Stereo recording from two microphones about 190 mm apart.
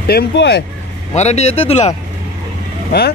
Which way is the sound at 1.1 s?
35° left (ahead or behind).